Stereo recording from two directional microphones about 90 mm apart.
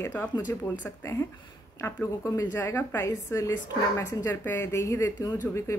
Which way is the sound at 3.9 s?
20° left (ahead or behind).